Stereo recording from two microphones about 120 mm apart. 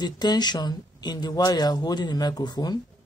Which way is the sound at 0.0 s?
35° left (ahead or behind).